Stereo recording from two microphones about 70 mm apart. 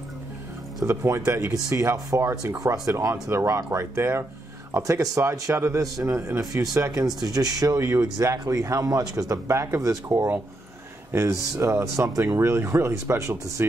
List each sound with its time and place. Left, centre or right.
0.8 s speech: right
7.2 s speech: right
9.5 s speech: right
11.1 s speech: right